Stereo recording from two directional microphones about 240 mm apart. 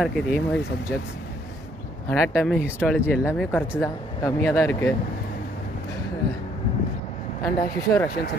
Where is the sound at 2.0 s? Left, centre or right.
Centre.